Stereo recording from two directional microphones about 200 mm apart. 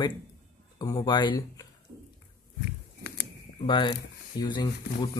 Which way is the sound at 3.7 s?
25° left (ahead or behind).